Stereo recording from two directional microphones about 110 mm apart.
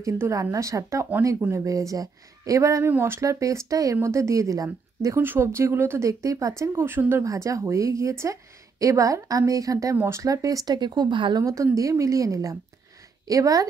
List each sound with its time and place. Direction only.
0.0 s speech: 30° right (ahead or behind); by 11.4 s 45° right (ahead or behind)
11.4 s speech: 30° right (ahead or behind)